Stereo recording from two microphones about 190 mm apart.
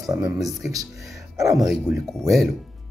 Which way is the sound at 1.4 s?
15° right (ahead or behind).